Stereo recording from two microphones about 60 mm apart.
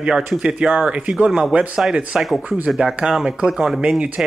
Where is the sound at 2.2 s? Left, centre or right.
Centre.